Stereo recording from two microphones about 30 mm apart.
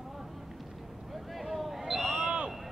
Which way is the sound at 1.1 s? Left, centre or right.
Centre.